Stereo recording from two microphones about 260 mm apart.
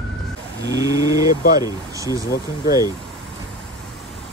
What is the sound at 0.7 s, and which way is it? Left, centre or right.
Speech, centre.